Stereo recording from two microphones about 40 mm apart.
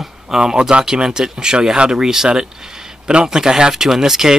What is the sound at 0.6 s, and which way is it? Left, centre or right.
Speech, right.